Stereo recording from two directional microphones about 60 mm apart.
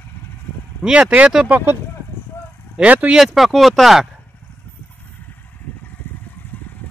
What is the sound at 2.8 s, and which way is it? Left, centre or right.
Speech, right.